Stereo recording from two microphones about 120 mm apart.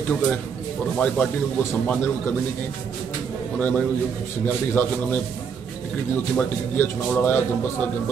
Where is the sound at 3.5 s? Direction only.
10° left (ahead or behind).